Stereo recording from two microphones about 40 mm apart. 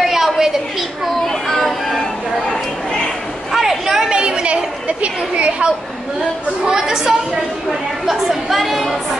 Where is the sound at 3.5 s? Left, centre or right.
Centre.